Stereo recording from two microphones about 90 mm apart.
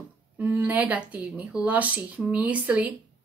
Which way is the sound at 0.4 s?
20° right (ahead or behind).